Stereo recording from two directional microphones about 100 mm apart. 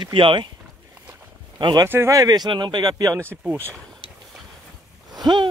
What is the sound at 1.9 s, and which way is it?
Speech, 30° right (ahead or behind).